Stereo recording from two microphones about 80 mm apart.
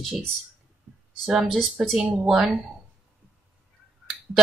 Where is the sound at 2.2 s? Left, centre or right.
Centre.